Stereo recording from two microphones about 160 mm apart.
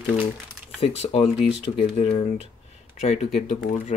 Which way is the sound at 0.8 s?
40° left (ahead or behind).